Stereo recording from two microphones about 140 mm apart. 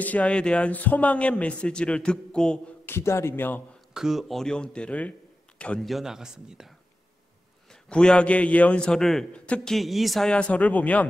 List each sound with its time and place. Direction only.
0.0 s a man's voice: 10° left (ahead or behind)
3.9 s speech: 5° right (ahead or behind)
7.9 s a man's voice: 5° left (ahead or behind)